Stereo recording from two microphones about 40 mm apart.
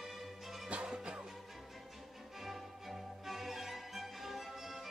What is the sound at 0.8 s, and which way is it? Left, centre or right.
Music, right.